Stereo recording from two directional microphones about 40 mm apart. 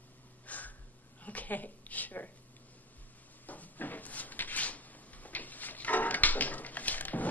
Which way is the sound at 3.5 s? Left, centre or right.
Left.